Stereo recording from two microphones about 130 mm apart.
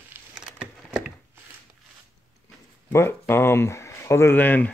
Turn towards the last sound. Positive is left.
turn(degrees=15)  # may be behind; listen again after turning